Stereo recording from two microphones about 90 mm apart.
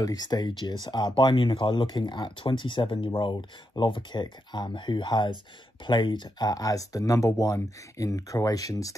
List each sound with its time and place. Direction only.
0.0 s speech: 50° left (ahead or behind)
1.1 s speech: 65° left (ahead or behind)
6.5 s speech: 40° left (ahead or behind)